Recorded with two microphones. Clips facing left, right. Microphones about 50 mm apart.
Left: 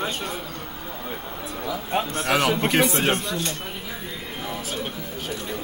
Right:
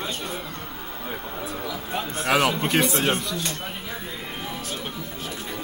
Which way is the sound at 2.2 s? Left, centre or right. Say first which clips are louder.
Right 2 dB; centre.